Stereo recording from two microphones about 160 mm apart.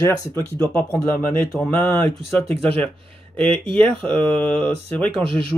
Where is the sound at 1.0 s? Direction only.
10° left (ahead or behind).